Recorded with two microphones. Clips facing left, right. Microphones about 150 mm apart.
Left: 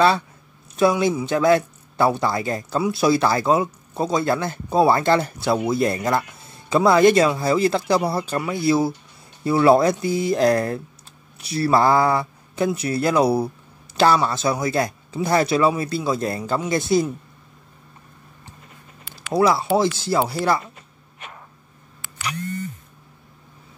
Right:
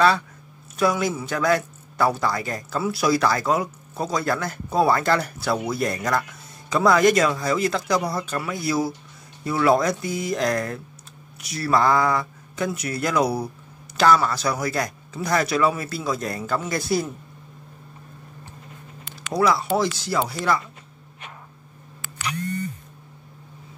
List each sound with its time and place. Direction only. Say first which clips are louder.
0.7 s speech: left 4 dB; 25° left (ahead or behind)
19.3 s speech: left 3 dB; 30° left (ahead or behind)